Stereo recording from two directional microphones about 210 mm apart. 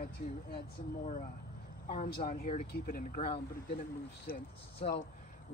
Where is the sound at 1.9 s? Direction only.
40° left (ahead or behind).